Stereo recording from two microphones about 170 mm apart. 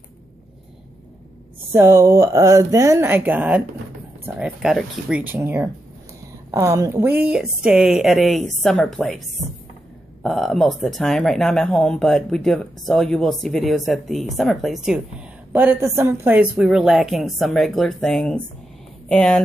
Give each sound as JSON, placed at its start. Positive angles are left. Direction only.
{"t": 1.7, "sound": "a woman's voice", "side_deg": -15}
{"t": 10.2, "sound": "a woman's voice", "side_deg": 0}